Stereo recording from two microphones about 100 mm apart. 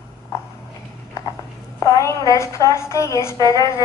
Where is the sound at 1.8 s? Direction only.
30° left (ahead or behind).